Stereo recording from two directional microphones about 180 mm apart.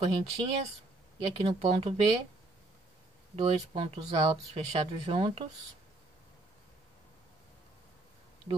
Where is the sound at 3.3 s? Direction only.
35° right (ahead or behind).